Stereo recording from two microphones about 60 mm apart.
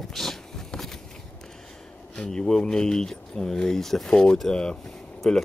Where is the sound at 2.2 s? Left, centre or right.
Centre.